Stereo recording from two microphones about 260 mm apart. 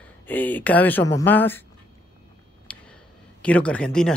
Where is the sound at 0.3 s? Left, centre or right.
Centre.